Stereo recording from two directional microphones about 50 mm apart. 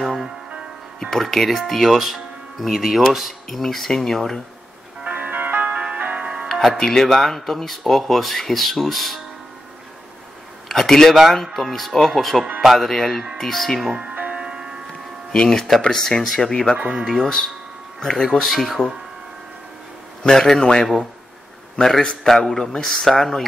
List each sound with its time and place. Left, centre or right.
0.0 s music: centre
1.1 s speech: centre
5.0 s music: right
6.5 s music: centre
6.8 s speech: centre
10.7 s speech: centre
14.3 s music: centre
15.3 s speech: centre
20.2 s speech: centre
22.0 s speech: centre